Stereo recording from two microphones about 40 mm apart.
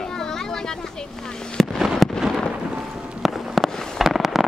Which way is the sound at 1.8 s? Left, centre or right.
Centre.